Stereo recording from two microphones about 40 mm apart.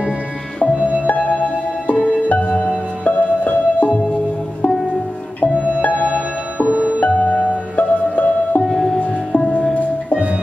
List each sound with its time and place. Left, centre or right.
1.0 s music: left
5.5 s music: right
5.8 s music: left
6.6 s music: right
7.0 s music: left
8.6 s music: centre